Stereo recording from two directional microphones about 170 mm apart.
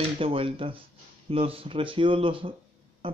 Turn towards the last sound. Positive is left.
turn(degrees=-30)  # may be behind; listen again after turning